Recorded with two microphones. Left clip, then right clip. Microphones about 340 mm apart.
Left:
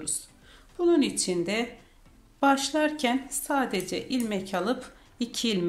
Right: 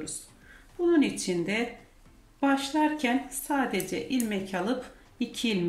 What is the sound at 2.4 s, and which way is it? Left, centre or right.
Speech, centre.